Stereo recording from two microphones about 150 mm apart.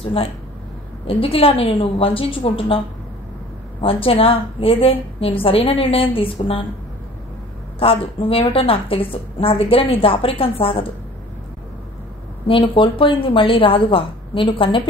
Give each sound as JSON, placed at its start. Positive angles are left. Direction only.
{"t": 0.0, "sound": "a woman's voice", "side_deg": 40}
{"t": 3.8, "sound": "a woman's voice", "side_deg": 40}
{"t": 7.8, "sound": "a woman's voice", "side_deg": 40}
{"t": 12.4, "sound": "a woman's voice", "side_deg": 35}